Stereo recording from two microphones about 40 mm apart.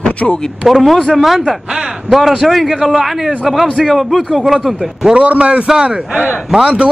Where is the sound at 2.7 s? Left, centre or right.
Centre.